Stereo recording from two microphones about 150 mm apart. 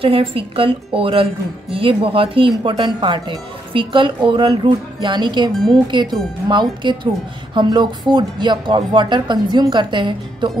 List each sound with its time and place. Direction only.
0.0 s speech: 40° right (ahead or behind)